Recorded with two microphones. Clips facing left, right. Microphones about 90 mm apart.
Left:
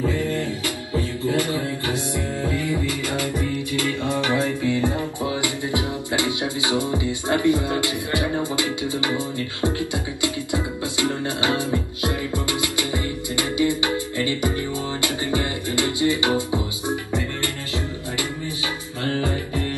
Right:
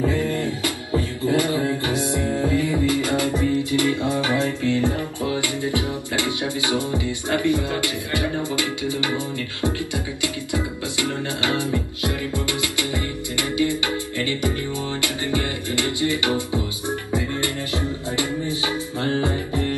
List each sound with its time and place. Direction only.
1.3 s music: 20° right (ahead or behind)
4.6 s music: 20° left (ahead or behind)
10.2 s music: 20° left (ahead or behind)
19.0 s music: 25° right (ahead or behind)